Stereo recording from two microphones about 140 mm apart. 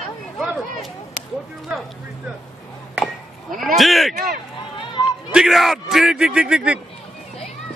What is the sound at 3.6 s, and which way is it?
Speech, centre (ahead or behind).